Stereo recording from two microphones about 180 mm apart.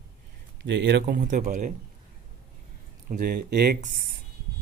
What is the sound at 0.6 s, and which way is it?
Speech, 85° right.